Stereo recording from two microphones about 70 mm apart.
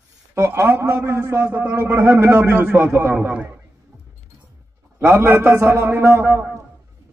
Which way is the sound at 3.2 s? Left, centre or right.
Centre.